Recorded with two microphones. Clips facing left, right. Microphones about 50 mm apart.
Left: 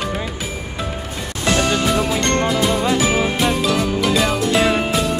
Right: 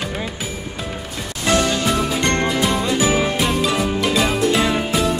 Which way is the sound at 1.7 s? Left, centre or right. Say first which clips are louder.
Left 2 dB; centre.